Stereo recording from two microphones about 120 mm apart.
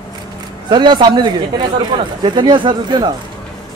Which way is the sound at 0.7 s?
40° right (ahead or behind).